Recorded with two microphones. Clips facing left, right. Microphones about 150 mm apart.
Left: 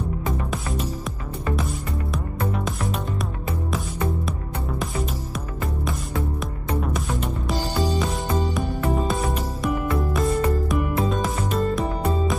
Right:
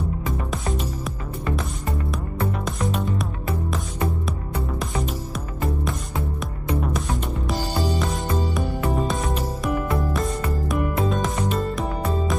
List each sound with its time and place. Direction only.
2.5 s music: centre (ahead or behind)
8.5 s music: centre (ahead or behind)